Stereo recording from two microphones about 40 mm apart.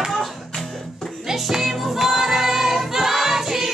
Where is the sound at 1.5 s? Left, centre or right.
Centre.